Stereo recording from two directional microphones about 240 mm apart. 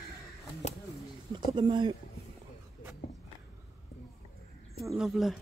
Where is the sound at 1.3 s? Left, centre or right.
Centre.